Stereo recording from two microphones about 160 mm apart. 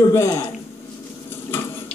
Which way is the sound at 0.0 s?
20° left (ahead or behind).